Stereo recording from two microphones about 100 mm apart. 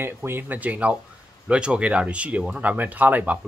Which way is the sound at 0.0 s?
25° right (ahead or behind).